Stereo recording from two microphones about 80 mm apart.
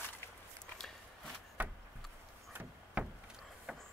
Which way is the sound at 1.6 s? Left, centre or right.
Centre.